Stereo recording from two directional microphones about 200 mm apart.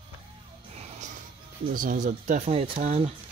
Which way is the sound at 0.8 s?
35° right (ahead or behind).